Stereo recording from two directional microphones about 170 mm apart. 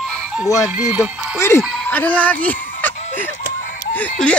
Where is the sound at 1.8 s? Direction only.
10° left (ahead or behind).